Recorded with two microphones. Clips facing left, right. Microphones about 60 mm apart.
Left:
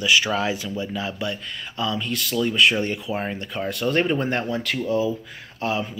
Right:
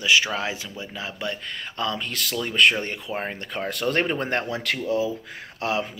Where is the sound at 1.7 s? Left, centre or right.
Right.